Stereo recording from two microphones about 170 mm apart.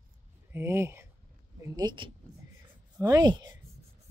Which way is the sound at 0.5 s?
15° right (ahead or behind).